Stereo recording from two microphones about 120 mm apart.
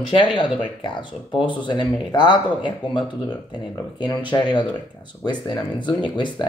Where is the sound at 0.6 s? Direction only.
40° left (ahead or behind).